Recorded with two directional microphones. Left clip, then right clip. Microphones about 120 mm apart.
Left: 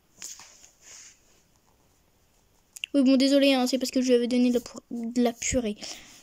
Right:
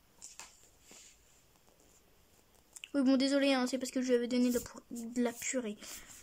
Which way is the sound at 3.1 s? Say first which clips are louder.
Left 9 dB; 25° left (ahead or behind).